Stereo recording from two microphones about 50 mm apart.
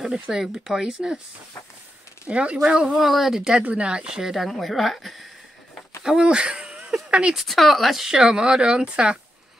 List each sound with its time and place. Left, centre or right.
0.0 s speech: centre
2.2 s speech: right
3.6 s speech: right
4.5 s a woman's voice: centre
6.0 s speech: centre
7.3 s speech: centre